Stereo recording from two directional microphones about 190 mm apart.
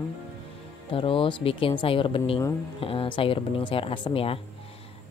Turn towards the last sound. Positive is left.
turn(degrees=30)  # may be behind; listen again after turning